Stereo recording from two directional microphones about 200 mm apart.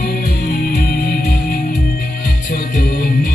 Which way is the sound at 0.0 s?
45° left (ahead or behind).